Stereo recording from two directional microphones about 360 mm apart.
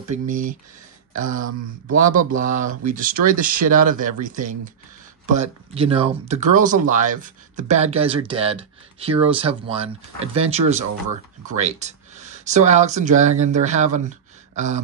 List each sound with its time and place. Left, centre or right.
0.1 s speech: right
1.1 s speech: right
2.7 s speech: right